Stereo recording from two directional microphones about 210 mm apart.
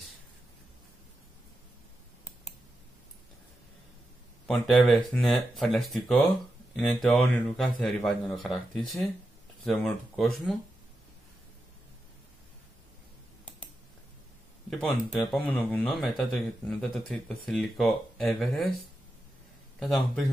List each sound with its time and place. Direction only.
4.5 s speech: centre (ahead or behind)
14.7 s speech: 5° left (ahead or behind)